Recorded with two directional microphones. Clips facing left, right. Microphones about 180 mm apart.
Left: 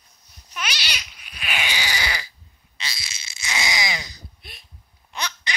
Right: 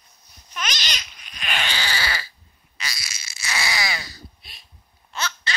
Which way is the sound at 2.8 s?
25° left (ahead or behind).